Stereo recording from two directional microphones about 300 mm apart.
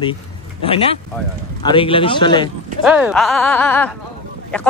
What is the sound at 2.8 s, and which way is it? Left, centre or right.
Speech, centre.